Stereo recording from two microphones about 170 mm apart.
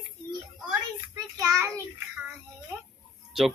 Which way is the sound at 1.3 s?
20° right (ahead or behind).